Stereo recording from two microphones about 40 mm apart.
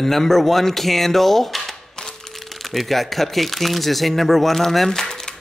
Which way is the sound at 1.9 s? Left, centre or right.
Centre.